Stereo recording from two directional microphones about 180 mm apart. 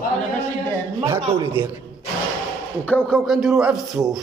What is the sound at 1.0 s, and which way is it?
Speech, 15° right (ahead or behind).